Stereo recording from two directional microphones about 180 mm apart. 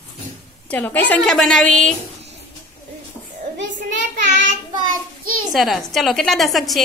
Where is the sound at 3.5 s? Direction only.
90° right.